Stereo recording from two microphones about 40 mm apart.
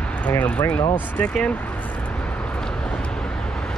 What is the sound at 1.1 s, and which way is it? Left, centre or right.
Speech, left.